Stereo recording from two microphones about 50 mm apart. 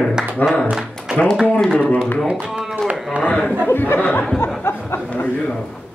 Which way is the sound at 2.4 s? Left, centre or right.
Centre.